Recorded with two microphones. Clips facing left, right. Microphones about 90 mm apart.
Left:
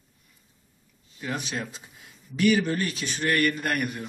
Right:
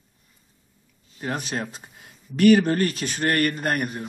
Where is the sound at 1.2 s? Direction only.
45° right (ahead or behind).